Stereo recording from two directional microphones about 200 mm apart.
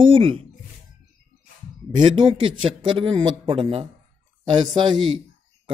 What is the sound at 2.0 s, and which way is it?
A man's voice, 25° right (ahead or behind).